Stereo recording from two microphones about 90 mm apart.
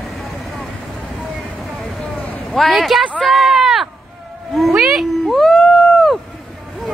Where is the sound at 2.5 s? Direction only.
Centre (ahead or behind).